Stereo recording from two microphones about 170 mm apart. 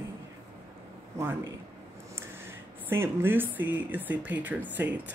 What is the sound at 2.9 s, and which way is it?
Speech, 10° right (ahead or behind).